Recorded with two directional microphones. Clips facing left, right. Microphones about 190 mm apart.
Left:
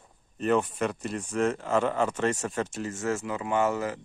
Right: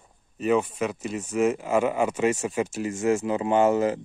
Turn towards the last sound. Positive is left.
turn(degrees=-20)  # may be behind; listen again after turning